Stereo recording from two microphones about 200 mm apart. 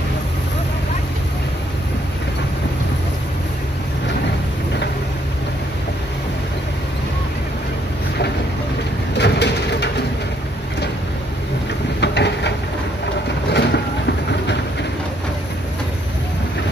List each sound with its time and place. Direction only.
9.1 s bird: 60° left (ahead or behind)
12.0 s train: 60° left (ahead or behind)
13.5 s vehicle: 55° left (ahead or behind)